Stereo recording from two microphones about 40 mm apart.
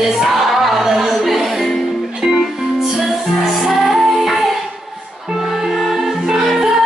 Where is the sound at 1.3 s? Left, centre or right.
Centre.